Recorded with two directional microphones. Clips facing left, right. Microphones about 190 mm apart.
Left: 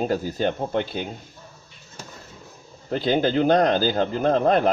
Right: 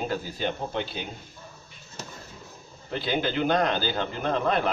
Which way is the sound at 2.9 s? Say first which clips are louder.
Left 7 dB; 45° left (ahead or behind).